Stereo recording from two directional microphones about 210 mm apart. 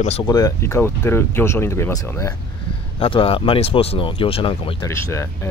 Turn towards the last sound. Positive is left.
turn(degrees=15)  # may be behind; listen again after turning